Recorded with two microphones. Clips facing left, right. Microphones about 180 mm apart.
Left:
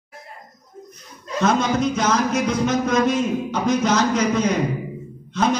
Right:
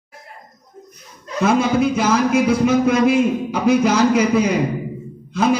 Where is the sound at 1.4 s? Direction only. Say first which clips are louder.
Right 3 dB; 10° right (ahead or behind).